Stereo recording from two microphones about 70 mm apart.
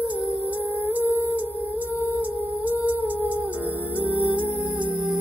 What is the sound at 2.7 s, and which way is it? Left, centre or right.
Humming, right.